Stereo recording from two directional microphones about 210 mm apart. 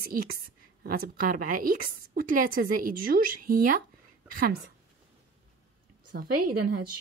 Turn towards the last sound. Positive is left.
turn(degrees=-45)  # may be behind; listen again after turning